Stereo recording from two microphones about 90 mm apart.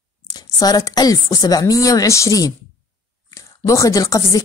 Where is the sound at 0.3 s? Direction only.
45° left (ahead or behind).